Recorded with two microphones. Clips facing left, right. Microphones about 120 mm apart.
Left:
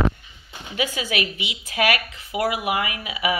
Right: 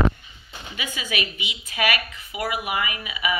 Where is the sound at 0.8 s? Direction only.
70° left (ahead or behind).